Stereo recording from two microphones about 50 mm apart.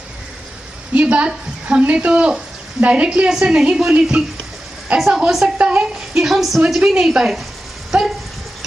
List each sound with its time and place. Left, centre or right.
1.1 s a woman's voice: right
4.9 s a woman's voice: centre
5.6 s a woman's voice: right
6.3 s speech: centre
6.8 s a woman's voice: centre
7.1 s a woman's voice: centre